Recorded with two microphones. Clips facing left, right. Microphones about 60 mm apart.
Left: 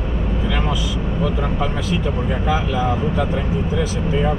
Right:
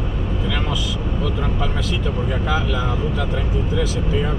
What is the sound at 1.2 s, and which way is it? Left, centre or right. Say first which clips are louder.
Speech: left 3 dB; centre.